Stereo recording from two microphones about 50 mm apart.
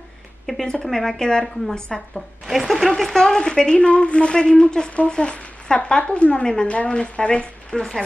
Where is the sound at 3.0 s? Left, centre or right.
Centre.